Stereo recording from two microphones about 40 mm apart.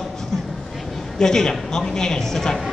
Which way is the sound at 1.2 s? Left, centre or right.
Centre.